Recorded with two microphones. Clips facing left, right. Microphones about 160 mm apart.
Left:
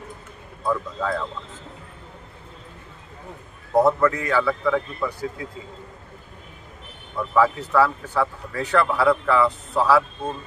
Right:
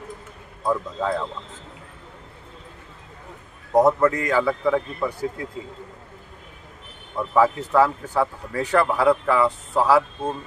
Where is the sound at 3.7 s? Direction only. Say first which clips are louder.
Right 1 dB; 20° right (ahead or behind).